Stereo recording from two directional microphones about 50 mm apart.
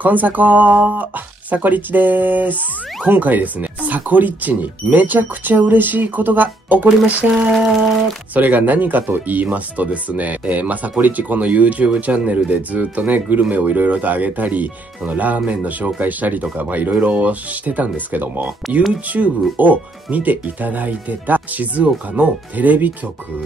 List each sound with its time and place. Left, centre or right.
0.0 s speech: right
7.5 s a sound: centre
8.4 s speech: right